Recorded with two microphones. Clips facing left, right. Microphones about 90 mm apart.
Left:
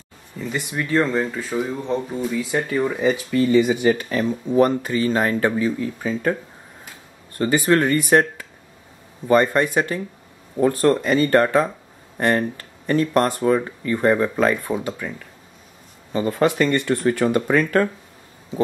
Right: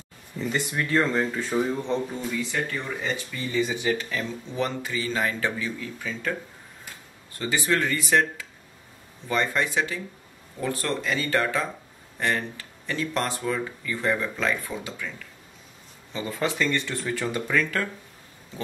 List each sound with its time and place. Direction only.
0.4 s speech: 5° left (ahead or behind)
3.3 s speech: 60° left (ahead or behind); by 6.3 s 40° left (ahead or behind)
7.3 s speech: 50° left (ahead or behind)